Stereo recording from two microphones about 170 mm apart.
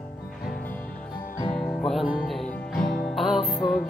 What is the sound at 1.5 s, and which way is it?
Music, 5° left (ahead or behind).